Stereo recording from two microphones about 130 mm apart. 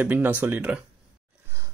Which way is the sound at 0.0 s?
15° right (ahead or behind).